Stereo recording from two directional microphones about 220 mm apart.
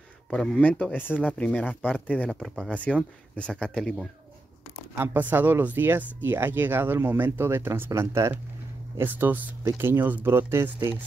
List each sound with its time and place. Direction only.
0.3 s speech: 5° left (ahead or behind)
4.9 s speech: 10° right (ahead or behind)